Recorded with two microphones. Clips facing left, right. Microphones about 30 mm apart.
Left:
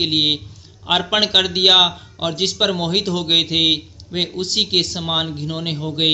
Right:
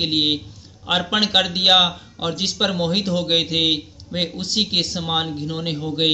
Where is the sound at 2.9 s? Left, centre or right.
Left.